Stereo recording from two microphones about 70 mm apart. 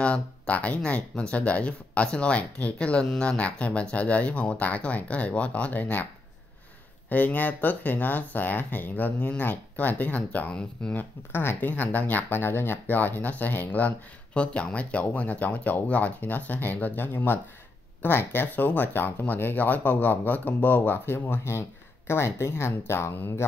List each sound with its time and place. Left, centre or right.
0.0 s speech: centre
7.1 s speech: left